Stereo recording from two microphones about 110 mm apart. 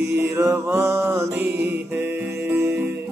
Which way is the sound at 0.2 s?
25° right (ahead or behind).